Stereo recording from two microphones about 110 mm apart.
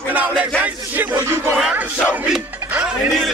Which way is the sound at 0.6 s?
15° right (ahead or behind).